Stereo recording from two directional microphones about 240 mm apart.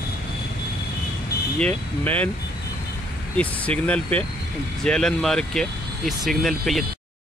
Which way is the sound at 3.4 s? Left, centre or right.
Centre.